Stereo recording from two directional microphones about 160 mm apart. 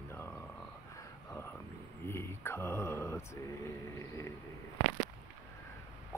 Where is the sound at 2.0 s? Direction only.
15° left (ahead or behind).